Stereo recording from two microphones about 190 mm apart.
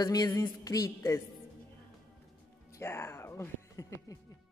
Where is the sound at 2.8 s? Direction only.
15° left (ahead or behind).